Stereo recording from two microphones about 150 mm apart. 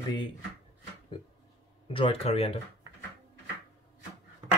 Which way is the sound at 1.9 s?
40° left (ahead or behind).